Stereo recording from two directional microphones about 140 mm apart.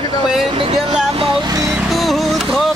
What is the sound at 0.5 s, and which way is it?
Speech, 45° right (ahead or behind).